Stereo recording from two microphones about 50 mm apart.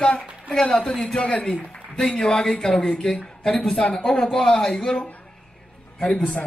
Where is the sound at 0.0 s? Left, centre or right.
Left.